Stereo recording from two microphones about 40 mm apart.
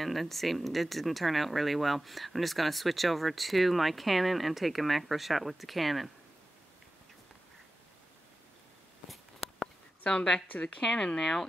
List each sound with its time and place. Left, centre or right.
0.0 s speech: centre
9.1 s a sound: centre
10.0 s a woman's voice: centre